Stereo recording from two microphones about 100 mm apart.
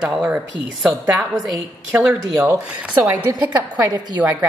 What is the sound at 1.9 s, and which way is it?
Speech, 15° right (ahead or behind).